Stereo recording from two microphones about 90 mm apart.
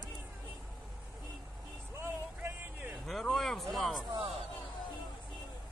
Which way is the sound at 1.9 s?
25° right (ahead or behind).